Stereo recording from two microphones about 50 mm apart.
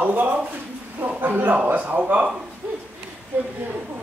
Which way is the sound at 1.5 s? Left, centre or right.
Right.